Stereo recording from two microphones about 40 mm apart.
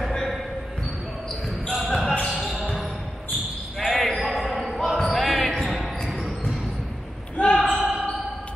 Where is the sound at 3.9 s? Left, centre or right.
Centre.